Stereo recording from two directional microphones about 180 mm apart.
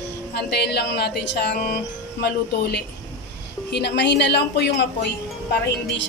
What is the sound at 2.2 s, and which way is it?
A woman's voice, 65° left (ahead or behind).